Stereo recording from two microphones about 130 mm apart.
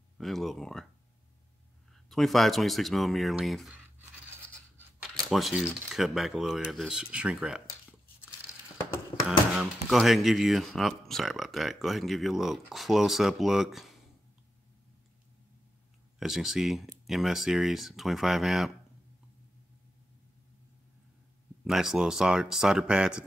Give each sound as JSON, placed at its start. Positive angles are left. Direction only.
{"t": 0.2, "sound": "speech", "side_deg": 0}
{"t": 2.0, "sound": "speech", "side_deg": 0}
{"t": 5.1, "sound": "speech", "side_deg": 0}
{"t": 9.6, "sound": "speech", "side_deg": 0}
{"t": 16.2, "sound": "speech", "side_deg": 0}
{"t": 21.6, "sound": "speech", "side_deg": -5}